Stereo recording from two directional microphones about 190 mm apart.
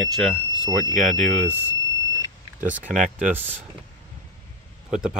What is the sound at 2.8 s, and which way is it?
Speech, 40° right (ahead or behind).